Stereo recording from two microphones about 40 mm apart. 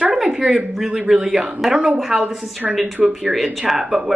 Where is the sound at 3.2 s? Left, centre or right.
Centre.